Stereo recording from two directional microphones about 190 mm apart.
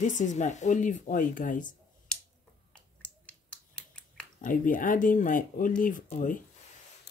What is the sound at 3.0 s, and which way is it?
Finger snapping, 5° left (ahead or behind).